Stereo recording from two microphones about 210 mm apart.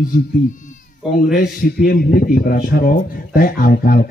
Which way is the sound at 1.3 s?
45° left (ahead or behind).